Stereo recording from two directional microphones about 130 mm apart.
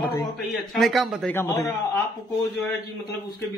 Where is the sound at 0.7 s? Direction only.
Centre (ahead or behind).